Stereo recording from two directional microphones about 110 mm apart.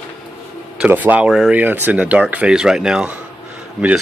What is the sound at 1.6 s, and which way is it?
Speech, 15° right (ahead or behind).